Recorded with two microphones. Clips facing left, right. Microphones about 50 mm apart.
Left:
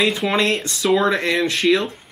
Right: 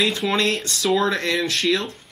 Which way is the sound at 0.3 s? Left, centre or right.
Centre.